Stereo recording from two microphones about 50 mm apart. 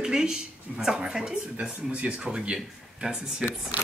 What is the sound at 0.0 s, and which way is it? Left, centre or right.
Speech, centre.